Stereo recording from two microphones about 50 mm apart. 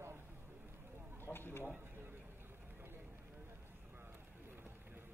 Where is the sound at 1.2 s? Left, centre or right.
Left.